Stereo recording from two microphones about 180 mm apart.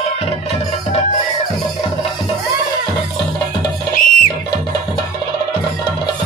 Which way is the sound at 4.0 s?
50° left (ahead or behind).